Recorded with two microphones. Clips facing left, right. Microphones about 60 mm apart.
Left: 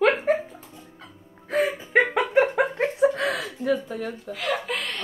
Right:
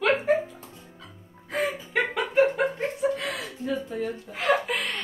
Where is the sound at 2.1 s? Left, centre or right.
Left.